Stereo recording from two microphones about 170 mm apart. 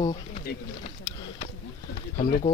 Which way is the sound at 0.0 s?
30° left (ahead or behind).